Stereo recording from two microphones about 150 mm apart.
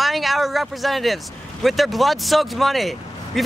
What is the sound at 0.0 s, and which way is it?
Speech, centre (ahead or behind).